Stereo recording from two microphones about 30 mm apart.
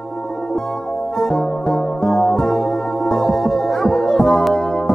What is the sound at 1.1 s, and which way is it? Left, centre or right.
Music, left.